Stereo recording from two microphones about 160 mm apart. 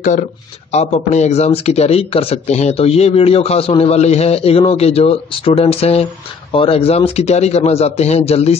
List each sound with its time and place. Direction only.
0.7 s speech: 45° left (ahead or behind)